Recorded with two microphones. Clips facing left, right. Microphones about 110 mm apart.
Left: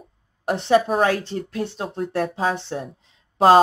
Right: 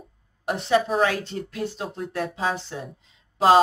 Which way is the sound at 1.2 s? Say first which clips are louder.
Left 3 dB; 30° left (ahead or behind).